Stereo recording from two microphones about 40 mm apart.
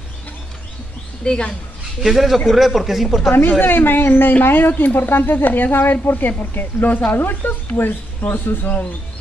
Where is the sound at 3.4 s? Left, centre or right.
Left.